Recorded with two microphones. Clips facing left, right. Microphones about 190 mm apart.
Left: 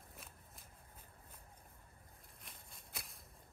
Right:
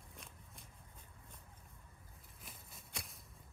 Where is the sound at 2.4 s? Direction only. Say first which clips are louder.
Right 3 dB; centre (ahead or behind).